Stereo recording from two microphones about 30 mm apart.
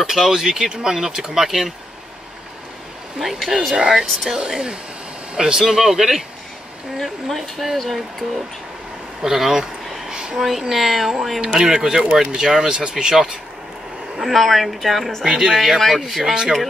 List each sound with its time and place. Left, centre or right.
0.0 s speech: centre
3.2 s speech: centre
4.3 s speech: centre
5.7 s speech: centre
7.0 s speech: centre
9.2 s speech: centre
10.0 s a sound: right
10.6 s speech: centre
11.4 s speech: right
14.1 s speech: centre
15.2 s speech: right
15.5 s speech: centre